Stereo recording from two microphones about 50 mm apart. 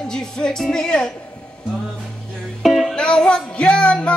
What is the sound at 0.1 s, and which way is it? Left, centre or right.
Speech, centre.